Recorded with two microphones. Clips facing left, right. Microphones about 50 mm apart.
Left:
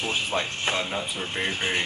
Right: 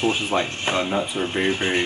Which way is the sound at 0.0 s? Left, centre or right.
Right.